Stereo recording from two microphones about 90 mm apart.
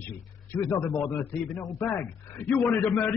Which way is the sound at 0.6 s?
30° left (ahead or behind).